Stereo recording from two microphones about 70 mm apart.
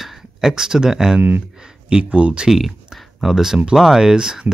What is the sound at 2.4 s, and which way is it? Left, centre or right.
Speech, centre.